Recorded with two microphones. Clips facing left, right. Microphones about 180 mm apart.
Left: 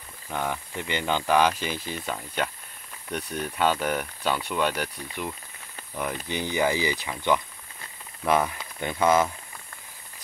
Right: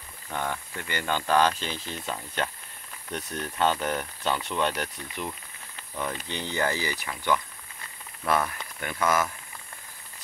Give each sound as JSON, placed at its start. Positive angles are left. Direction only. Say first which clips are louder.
{"t": 0.3, "sound": "speech", "louder": "left 2 dB", "side_deg": 10}